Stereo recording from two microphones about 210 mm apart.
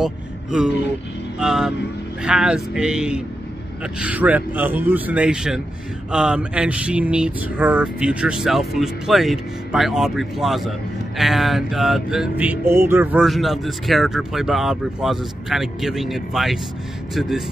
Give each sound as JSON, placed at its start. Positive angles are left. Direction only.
{"t": 0.0, "sound": "speech", "side_deg": -5}
{"t": 1.4, "sound": "music", "side_deg": -5}
{"t": 3.8, "sound": "speech", "side_deg": -5}
{"t": 6.1, "sound": "music", "side_deg": -5}